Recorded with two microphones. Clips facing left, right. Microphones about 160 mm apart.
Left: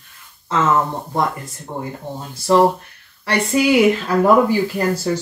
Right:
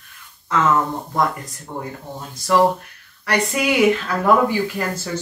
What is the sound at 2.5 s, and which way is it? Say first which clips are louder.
Speech: left 2 dB; 25° left (ahead or behind).